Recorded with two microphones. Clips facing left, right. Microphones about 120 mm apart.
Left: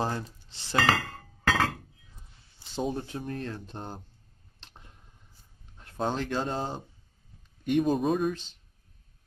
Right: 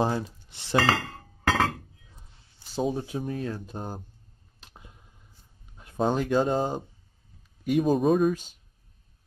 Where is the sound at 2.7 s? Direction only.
5° right (ahead or behind).